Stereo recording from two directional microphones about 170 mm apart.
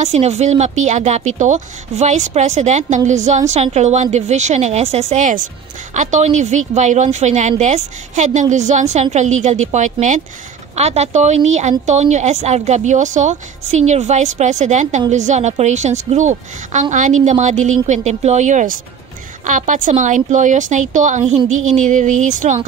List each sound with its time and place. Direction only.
0.0 s a woman's voice: 40° right (ahead or behind)